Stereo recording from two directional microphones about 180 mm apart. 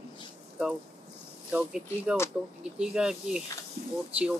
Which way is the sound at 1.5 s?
5° right (ahead or behind).